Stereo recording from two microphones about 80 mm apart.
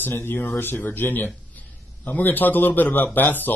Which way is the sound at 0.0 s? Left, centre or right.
Left.